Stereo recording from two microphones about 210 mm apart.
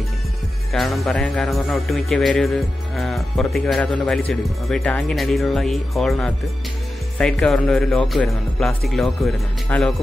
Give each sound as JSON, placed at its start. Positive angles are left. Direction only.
{"t": 0.7, "sound": "a man's voice", "side_deg": 0}